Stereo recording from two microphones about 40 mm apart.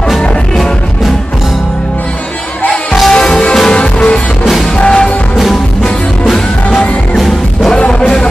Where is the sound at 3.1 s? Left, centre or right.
Centre.